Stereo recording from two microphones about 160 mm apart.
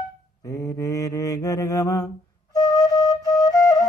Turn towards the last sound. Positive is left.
turn(degrees=20)  # may be behind; listen again after turning